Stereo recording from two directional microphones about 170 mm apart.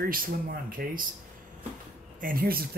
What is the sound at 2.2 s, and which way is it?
Speech, 60° right (ahead or behind).